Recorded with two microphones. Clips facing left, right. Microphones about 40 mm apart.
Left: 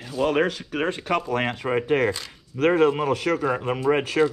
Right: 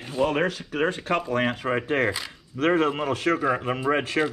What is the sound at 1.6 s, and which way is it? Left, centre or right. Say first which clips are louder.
Speech: left 2 dB; centre.